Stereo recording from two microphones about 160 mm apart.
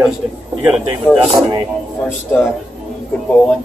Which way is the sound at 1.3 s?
30° right (ahead or behind).